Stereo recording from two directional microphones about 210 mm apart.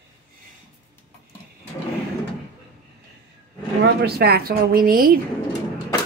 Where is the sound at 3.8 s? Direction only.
50° right (ahead or behind).